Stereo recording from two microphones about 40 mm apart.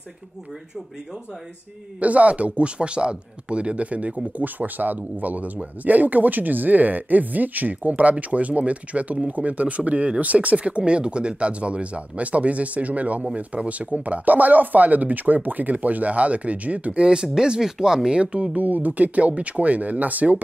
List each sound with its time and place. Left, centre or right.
2.0 s speech: right
18.6 s speech: right